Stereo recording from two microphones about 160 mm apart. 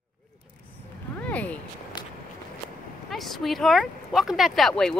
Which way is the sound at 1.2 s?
10° left (ahead or behind).